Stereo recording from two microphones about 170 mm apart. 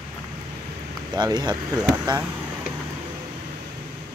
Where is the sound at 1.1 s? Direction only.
25° right (ahead or behind).